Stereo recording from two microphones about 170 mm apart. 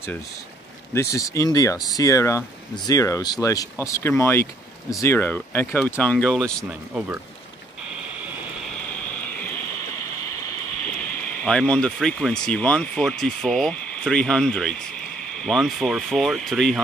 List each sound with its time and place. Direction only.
0.9 s speech: 20° left (ahead or behind)
6.9 s speech: 10° right (ahead or behind)
8.2 s vehicle: 10° right (ahead or behind)
8.6 s a sound: 5° left (ahead or behind)
11.4 s speech: 5° left (ahead or behind)